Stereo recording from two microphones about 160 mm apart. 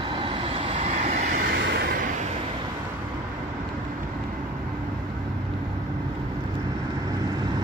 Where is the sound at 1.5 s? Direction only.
90° right.